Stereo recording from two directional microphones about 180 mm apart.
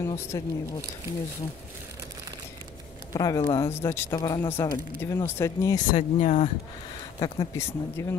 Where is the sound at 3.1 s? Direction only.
20° left (ahead or behind).